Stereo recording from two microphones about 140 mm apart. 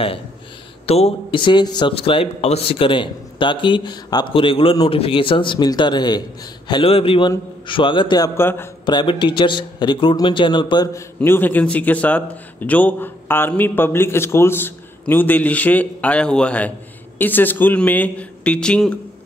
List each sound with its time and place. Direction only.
0.8 s speech: 45° left (ahead or behind)
8.4 s speech: 15° left (ahead or behind)
8.8 s speech: 35° left (ahead or behind)
11.1 s speech: 15° left (ahead or behind)